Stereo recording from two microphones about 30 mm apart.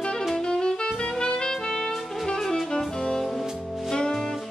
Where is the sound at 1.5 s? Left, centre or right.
Centre.